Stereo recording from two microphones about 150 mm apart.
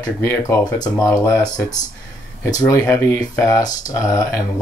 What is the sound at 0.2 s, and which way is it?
Speech, 20° left (ahead or behind).